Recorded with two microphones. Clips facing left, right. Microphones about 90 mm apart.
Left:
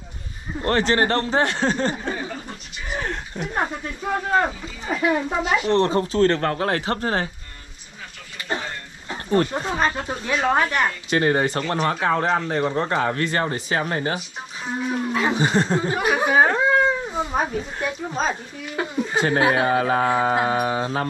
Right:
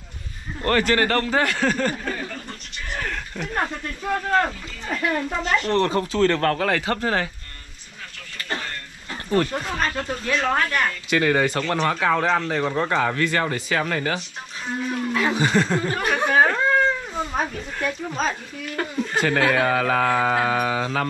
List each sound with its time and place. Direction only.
0.7 s speech: 25° left (ahead or behind)
2.1 s speech: 10° left (ahead or behind)
5.7 s speech: 25° left (ahead or behind)
9.1 s speech: 20° left (ahead or behind)
11.1 s speech: 30° left (ahead or behind)
12.4 s speech: 15° left (ahead or behind); by 14.1 s 30° left (ahead or behind)
14.8 s speech: 15° left (ahead or behind)
15.3 s speech: 30° left (ahead or behind)
15.9 s cat: 5° left (ahead or behind)
17.8 s speech: 10° left (ahead or behind)
19.4 s speech: 25° left (ahead or behind)